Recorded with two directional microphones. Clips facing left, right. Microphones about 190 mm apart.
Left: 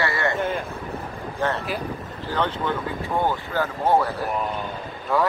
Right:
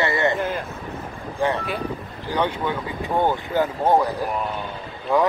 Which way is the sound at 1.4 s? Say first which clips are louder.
Right 3 dB; 15° right (ahead or behind).